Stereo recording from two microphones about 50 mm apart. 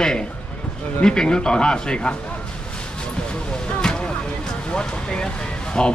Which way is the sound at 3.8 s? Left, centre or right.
Centre.